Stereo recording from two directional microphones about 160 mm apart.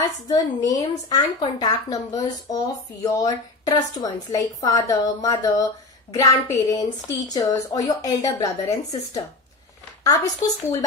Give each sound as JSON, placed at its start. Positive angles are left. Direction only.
{"t": 0.3, "sound": "a woman's voice", "side_deg": 25}
{"t": 10.0, "sound": "a woman's voice", "side_deg": 20}